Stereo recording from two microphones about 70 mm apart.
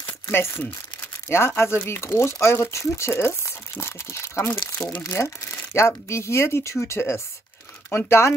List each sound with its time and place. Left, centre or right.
0.3 s speech: left